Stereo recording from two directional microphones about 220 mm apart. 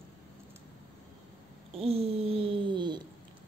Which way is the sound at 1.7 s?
25° right (ahead or behind).